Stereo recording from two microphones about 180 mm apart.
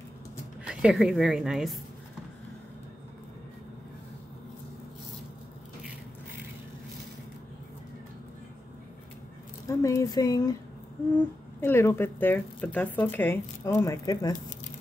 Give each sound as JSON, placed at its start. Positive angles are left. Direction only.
{"t": 0.7, "sound": "a woman's voice", "side_deg": -5}
{"t": 9.7, "sound": "speech", "side_deg": 15}
{"t": 11.6, "sound": "speech", "side_deg": 15}